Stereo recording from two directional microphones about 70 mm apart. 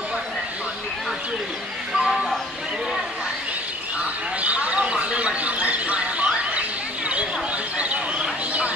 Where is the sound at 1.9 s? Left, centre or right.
Centre.